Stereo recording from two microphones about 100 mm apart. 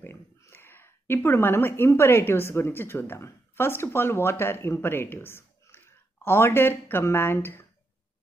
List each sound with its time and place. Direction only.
0.0 s speech: 25° left (ahead or behind)